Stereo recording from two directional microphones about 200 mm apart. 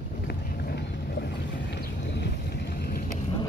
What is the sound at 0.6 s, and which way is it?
Boat, 55° left (ahead or behind).